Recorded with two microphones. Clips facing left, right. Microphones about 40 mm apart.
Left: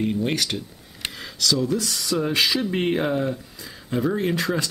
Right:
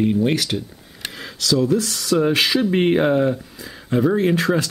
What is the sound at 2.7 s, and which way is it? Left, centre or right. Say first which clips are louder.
Speech: right 6 dB; centre.